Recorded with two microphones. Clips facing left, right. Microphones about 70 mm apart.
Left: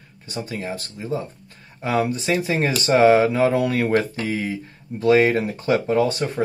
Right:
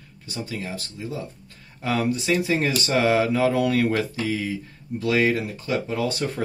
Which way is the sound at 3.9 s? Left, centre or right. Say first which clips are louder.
Left 4 dB; left.